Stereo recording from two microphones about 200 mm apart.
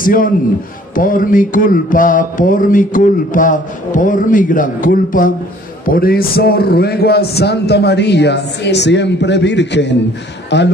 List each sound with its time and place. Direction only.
0.0 s a man's voice: 45° left (ahead or behind)
0.9 s a sound: 45° left (ahead or behind)
5.9 s a man's voice: 50° left (ahead or behind)